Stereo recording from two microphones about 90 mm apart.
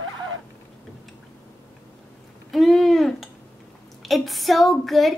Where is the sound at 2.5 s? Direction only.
Centre (ahead or behind).